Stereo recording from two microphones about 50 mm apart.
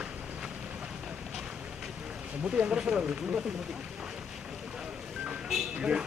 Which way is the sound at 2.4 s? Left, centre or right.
Right.